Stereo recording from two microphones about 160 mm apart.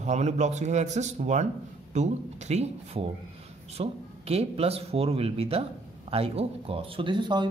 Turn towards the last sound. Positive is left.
turn(degrees=-30)  # may be behind; listen again after turning